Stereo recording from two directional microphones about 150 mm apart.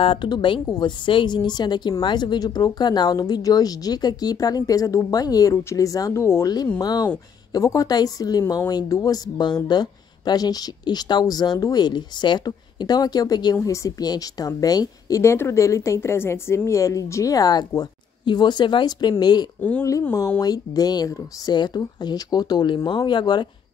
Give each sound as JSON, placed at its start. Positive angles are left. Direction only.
{"t": 0.0, "sound": "speech", "side_deg": 35}